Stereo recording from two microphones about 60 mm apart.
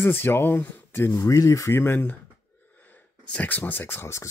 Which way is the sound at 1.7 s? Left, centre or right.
Left.